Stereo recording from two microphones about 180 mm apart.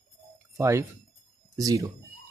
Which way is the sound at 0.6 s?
15° right (ahead or behind).